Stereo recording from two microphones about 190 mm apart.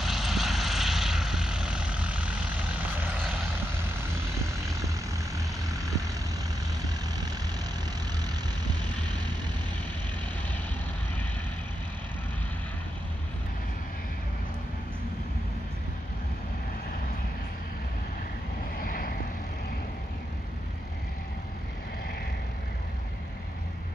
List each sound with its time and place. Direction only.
0.0 s vehicle: centre (ahead or behind)
4.1 s vehicle: 15° right (ahead or behind)
18.8 s vehicle: 50° left (ahead or behind)